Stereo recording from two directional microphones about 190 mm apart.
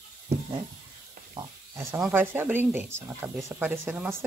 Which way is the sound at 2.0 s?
10° right (ahead or behind).